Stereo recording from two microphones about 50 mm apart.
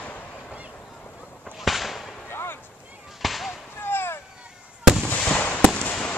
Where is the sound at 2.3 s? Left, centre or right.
Left.